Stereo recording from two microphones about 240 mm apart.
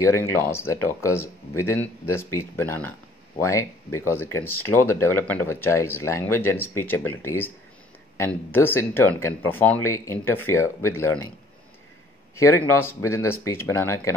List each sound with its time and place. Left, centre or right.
0.0 s speech: centre
4.6 s speech: left
4.9 s speech: centre
12.4 s speech: centre